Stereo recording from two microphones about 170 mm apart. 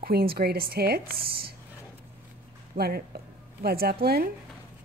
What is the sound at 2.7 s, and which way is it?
A woman's voice, 65° right (ahead or behind).